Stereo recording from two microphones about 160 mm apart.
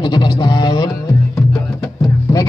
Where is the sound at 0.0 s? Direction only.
25° left (ahead or behind).